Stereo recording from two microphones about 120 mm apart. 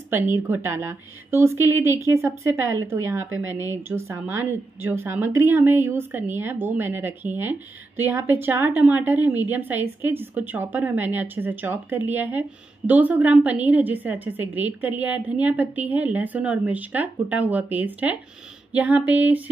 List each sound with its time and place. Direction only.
0.1 s a woman's voice: 20° right (ahead or behind)